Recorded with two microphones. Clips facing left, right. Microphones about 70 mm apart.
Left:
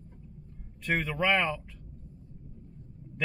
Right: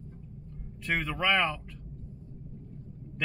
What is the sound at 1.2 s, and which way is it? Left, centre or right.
Speech, centre.